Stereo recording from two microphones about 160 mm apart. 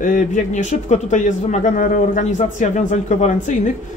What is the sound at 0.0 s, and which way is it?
A man's voice, 55° left (ahead or behind).